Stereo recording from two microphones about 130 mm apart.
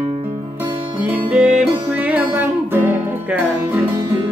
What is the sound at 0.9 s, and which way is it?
Music, 10° right (ahead or behind).